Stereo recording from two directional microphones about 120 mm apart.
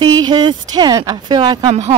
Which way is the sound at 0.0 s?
35° right (ahead or behind).